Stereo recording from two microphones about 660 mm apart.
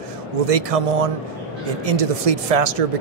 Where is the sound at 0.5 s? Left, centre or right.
Right.